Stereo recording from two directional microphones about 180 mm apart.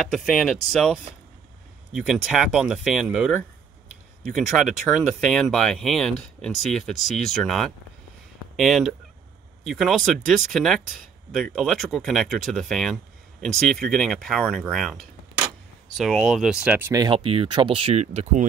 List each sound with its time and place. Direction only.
0.1 s speech: centre (ahead or behind)
4.9 s speech: 5° left (ahead or behind)
16.9 s speech: 25° right (ahead or behind)